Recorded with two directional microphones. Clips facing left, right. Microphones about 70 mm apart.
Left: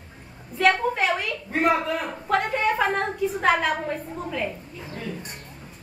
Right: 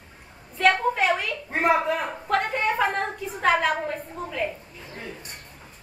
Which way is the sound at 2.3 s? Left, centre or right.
Centre.